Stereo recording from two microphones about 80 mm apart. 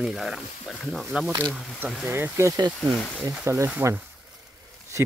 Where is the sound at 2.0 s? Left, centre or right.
Right.